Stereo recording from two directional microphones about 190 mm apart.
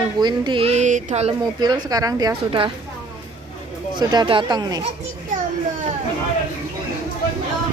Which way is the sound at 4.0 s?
25° right (ahead or behind).